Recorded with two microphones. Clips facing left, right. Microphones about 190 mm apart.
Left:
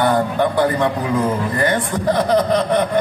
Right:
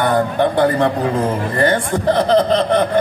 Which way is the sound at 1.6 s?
25° right (ahead or behind).